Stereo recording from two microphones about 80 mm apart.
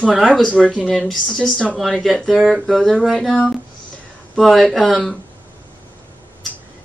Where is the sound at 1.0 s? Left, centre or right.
Centre.